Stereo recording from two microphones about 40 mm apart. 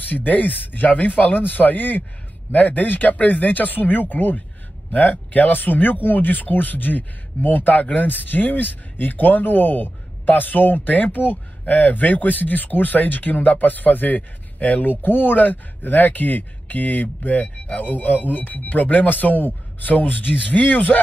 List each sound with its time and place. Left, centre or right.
0.0 s speech: left